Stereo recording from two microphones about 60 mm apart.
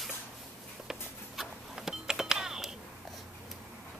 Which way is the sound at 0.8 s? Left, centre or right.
Centre.